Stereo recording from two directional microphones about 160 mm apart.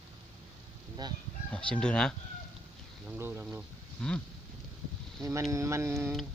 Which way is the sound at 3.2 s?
15° right (ahead or behind).